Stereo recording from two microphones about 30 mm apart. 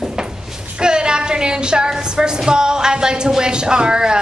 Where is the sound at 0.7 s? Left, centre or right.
Right.